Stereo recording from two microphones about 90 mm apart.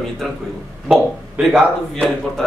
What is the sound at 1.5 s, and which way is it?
Speech, 5° left (ahead or behind).